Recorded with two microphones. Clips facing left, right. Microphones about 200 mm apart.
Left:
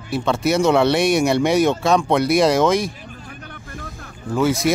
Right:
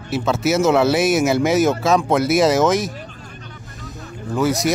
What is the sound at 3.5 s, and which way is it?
Vehicle, 55° left (ahead or behind).